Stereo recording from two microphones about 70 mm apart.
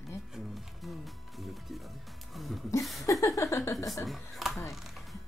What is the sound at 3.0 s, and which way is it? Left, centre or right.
Speech, left.